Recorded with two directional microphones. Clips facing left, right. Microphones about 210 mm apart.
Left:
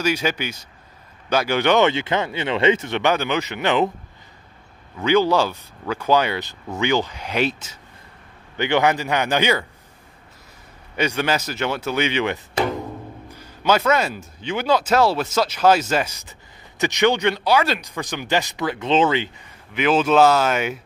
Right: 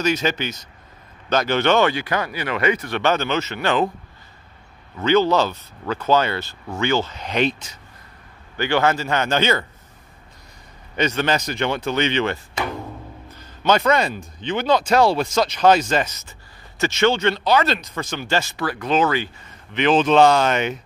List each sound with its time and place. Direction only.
0.0 s speech: 10° left (ahead or behind)
5.0 s speech: 10° left (ahead or behind)
8.5 s speech: 20° left (ahead or behind)
11.0 s speech: 10° left (ahead or behind)
19.7 s speech: 5° left (ahead or behind)